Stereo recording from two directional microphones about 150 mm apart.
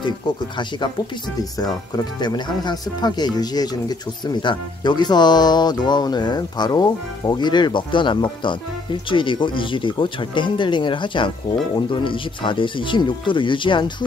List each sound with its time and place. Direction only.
2.1 s speech: 30° left (ahead or behind)